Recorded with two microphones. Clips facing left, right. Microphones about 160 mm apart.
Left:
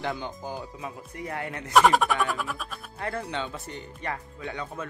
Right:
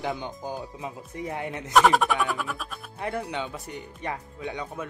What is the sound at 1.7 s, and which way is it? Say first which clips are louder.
Music: even; centre (ahead or behind).